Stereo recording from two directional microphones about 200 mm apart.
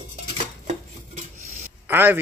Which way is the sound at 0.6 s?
35° right (ahead or behind).